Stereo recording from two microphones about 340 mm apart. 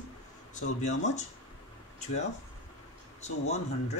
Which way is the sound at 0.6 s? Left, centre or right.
Left.